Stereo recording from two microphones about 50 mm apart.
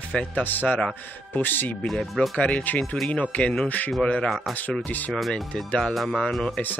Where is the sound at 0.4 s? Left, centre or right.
Left.